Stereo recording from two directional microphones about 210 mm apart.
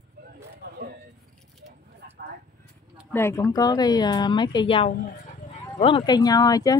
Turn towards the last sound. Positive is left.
turn(degrees=15)  # may be behind; listen again after turning